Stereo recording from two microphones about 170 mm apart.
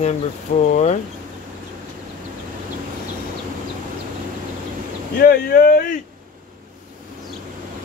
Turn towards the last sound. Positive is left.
turn(degrees=55)  # may be behind; listen again after turning